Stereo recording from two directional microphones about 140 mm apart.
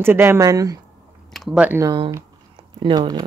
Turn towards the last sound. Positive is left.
turn(degrees=-30)  # may be behind; listen again after turning